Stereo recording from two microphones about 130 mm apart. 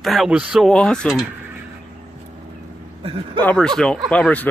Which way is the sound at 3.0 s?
45° right (ahead or behind).